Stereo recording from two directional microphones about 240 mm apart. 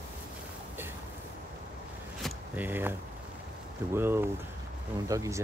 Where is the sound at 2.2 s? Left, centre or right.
Centre.